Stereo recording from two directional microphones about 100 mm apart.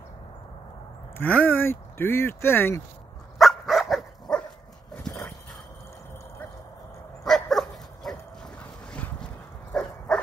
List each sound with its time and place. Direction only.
1.1 s speech: 20° left (ahead or behind)
3.3 s dog: centre (ahead or behind)
7.2 s dog: 5° left (ahead or behind)
9.8 s dog: 5° left (ahead or behind)